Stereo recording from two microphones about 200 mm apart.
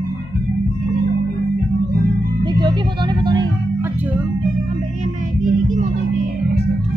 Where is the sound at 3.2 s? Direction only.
20° right (ahead or behind).